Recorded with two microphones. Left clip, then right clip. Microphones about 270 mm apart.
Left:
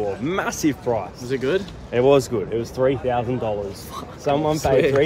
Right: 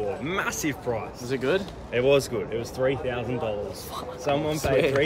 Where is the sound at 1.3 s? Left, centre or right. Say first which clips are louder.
Left 3 dB; centre.